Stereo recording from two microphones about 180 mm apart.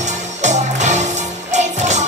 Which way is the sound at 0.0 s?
40° right (ahead or behind).